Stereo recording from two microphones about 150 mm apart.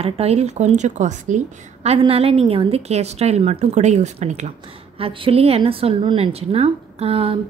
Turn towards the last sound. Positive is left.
turn(degrees=-40)  # may be behind; listen again after turning